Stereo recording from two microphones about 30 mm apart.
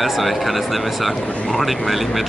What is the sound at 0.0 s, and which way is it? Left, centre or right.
Speech, centre.